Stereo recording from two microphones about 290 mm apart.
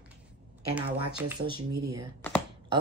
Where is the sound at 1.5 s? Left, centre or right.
Centre.